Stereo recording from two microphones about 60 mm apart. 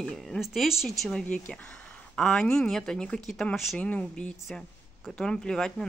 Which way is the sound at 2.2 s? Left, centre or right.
Centre.